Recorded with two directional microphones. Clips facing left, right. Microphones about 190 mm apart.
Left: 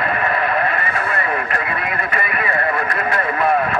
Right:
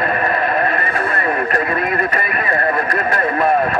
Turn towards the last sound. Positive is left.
turn(degrees=-40)  # may be behind; listen again after turning